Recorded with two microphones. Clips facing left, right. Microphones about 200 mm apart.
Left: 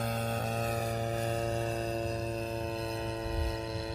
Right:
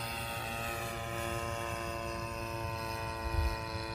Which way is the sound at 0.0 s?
45° left (ahead or behind).